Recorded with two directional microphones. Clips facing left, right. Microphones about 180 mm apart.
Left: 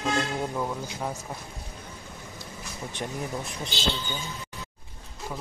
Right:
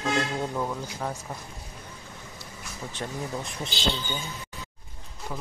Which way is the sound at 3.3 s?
Centre (ahead or behind).